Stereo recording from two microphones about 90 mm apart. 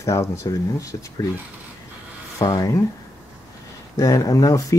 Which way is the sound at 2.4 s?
40° left (ahead or behind).